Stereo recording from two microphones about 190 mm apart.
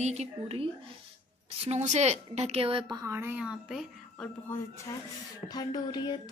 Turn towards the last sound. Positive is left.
turn(degrees=20)  # may be behind; listen again after turning